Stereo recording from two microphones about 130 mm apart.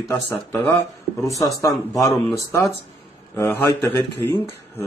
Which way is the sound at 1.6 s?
25° left (ahead or behind).